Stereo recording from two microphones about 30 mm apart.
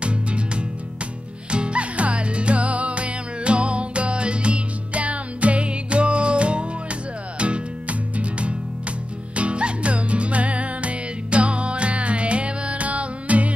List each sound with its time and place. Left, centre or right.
1.5 s music: right
9.3 s music: right